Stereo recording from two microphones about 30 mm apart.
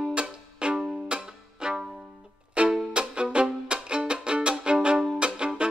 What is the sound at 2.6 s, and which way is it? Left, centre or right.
Music, right.